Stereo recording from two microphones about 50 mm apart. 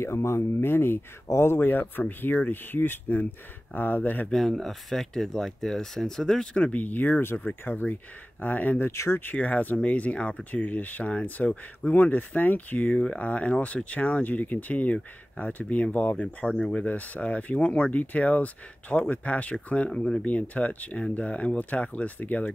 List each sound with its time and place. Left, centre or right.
0.0 s speech: left
1.2 s speech: left
4.3 s speech: centre
6.5 s speech: left
8.9 s speech: left
9.2 s speech: left
10.5 s speech: left
19.9 s speech: centre
20.2 s speech: left